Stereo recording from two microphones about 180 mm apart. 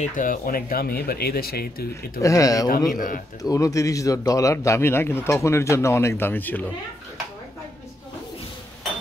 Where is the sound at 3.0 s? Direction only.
50° left (ahead or behind).